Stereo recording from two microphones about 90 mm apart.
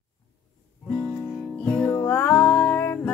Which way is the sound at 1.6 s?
10° left (ahead or behind).